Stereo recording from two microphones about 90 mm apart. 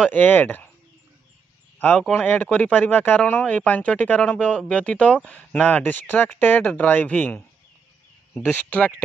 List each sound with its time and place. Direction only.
0.1 s speech: 20° left (ahead or behind)
2.1 s speech: 20° left (ahead or behind)
8.6 s speech: 15° left (ahead or behind)